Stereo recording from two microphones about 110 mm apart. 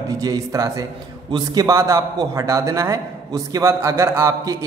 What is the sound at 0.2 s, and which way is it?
A man's voice, 30° right (ahead or behind).